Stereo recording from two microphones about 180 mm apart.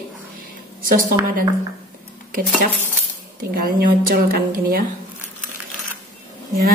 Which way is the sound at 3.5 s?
55° right (ahead or behind).